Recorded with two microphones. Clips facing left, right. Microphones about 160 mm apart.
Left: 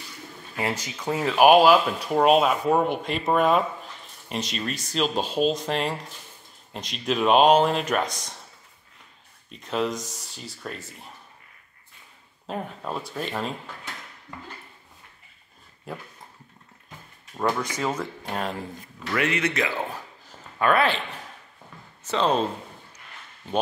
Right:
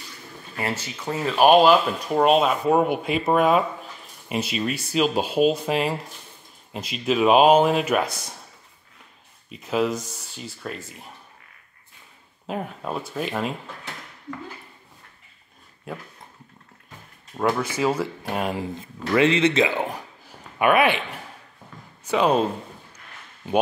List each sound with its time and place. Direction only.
0.6 s speech: 15° left (ahead or behind); by 8.4 s 10° right (ahead or behind)
9.5 s speech: 5° right (ahead or behind)
12.4 s speech: 5° right (ahead or behind)
17.4 s speech: 5° right (ahead or behind)
18.8 s a man's voice: 25° right (ahead or behind); by 22.5 s 10° right (ahead or behind)